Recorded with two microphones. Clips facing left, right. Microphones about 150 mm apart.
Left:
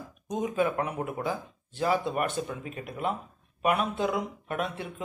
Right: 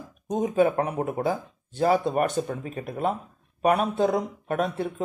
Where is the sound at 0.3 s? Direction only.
35° right (ahead or behind).